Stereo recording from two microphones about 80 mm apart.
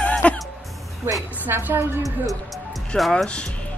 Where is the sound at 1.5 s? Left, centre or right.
Right.